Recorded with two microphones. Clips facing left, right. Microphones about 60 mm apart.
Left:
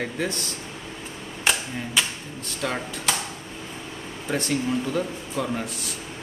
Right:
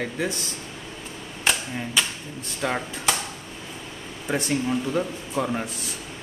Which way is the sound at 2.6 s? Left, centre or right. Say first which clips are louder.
Right 2 dB; centre.